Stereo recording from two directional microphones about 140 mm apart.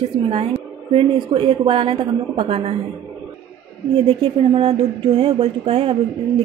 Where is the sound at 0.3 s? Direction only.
45° right (ahead or behind).